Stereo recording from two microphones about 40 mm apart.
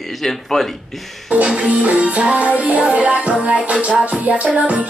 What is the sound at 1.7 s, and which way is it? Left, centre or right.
Music, right.